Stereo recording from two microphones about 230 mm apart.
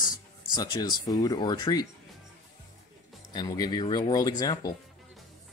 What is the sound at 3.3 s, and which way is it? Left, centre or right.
Speech, centre.